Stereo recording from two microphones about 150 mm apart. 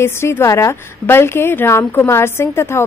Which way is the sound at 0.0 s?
15° left (ahead or behind).